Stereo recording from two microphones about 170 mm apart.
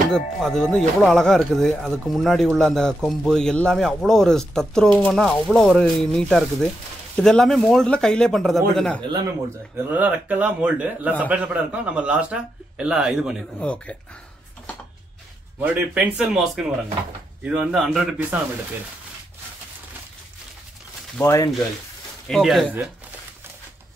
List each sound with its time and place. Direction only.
0.1 s speech: 5° left (ahead or behind)
9.0 s speech: 25° right (ahead or behind)
9.8 s a man's voice: 10° right (ahead or behind)
13.6 s speech: 5° left (ahead or behind)
15.6 s a man's voice: 10° right (ahead or behind)
21.2 s speech: 15° left (ahead or behind)
22.3 s speech: centre (ahead or behind)